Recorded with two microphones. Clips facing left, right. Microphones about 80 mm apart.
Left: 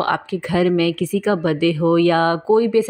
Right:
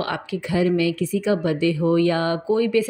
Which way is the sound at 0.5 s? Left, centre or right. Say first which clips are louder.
Left 3 dB; left.